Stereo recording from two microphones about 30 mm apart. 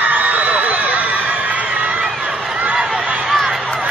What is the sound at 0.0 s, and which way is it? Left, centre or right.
Crowd, right.